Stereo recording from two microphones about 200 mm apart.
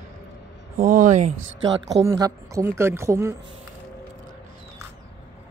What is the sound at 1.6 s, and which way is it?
A woman's voice, 20° right (ahead or behind).